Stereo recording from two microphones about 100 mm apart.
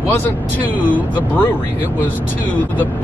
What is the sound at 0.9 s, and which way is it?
Speech, 20° left (ahead or behind).